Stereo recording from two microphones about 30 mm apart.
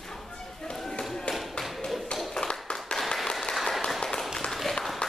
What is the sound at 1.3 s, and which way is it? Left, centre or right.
Tap, left.